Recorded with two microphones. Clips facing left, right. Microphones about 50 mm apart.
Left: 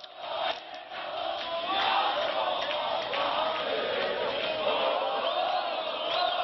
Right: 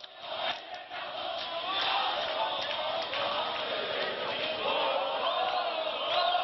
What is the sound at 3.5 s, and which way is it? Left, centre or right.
Chant, left.